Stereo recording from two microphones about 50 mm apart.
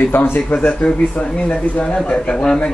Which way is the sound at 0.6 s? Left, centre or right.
Left.